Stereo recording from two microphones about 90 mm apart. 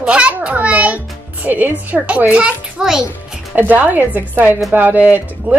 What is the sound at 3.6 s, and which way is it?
A woman's voice, 20° right (ahead or behind).